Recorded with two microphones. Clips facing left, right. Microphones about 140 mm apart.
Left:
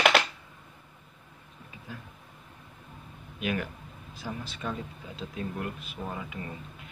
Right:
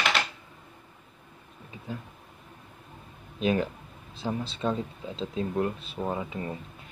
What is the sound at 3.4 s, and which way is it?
Speech, 30° right (ahead or behind).